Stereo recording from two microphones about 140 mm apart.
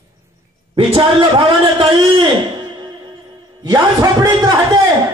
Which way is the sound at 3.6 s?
25° right (ahead or behind).